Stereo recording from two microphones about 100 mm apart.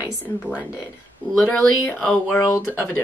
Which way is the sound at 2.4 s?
25° left (ahead or behind).